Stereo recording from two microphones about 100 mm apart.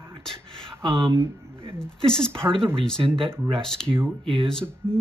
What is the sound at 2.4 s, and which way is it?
Speech, 60° right (ahead or behind).